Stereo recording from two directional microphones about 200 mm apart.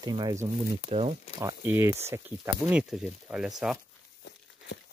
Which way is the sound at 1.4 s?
15° right (ahead or behind).